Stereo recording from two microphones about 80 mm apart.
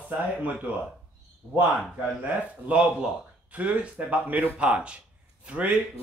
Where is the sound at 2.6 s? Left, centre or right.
Centre.